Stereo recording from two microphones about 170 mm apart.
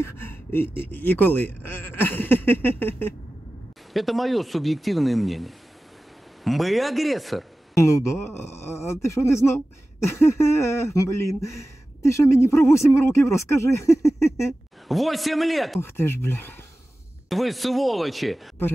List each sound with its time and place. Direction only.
0.0 s speech: 15° left (ahead or behind)
3.9 s speech: centre (ahead or behind)
7.7 s speech: 15° left (ahead or behind)
14.9 s speech: centre (ahead or behind)
15.8 s speech: 15° left (ahead or behind)
17.3 s speech: centre (ahead or behind)